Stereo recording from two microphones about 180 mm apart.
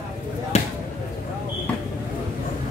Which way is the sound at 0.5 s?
40° left (ahead or behind).